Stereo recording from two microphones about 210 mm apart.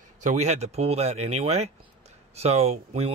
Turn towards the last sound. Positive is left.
turn(degrees=-30)  # may be behind; listen again after turning